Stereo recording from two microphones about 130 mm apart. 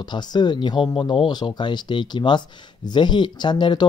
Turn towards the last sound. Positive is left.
turn(degrees=35)  # may be behind; listen again after turning